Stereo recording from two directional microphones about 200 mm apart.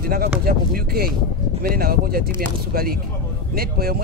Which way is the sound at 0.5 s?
50° right (ahead or behind).